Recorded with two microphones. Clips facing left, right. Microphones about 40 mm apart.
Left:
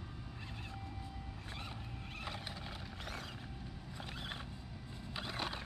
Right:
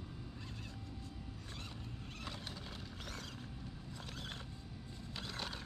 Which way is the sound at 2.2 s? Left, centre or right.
Centre.